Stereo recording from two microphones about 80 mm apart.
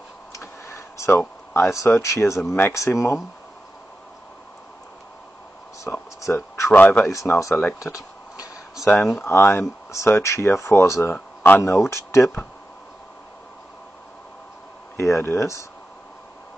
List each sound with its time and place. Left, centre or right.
0.3 s tick-tock: left
1.5 s speech: left
5.9 s a sound: left
6.7 s speech: centre
7.1 s speech: left
9.2 s speech: left
11.1 s a sound: centre
11.6 s speech: left
15.0 s speech: left